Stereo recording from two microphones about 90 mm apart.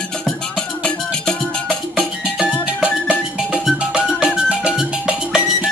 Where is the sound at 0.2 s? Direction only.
10° left (ahead or behind).